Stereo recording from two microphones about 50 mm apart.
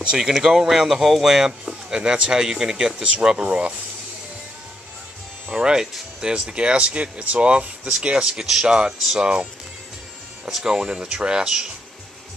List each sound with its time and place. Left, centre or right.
0.1 s speech: centre
2.0 s speech: right
3.0 s speech: right
5.5 s speech: centre
10.5 s speech: centre